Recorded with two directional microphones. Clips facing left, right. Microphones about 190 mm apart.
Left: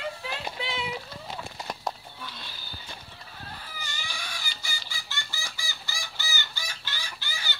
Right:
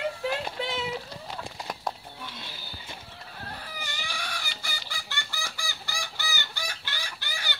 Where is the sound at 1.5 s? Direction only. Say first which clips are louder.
Even; centre (ahead or behind).